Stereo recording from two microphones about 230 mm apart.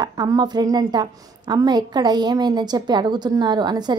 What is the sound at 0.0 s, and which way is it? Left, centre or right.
A woman's voice, centre.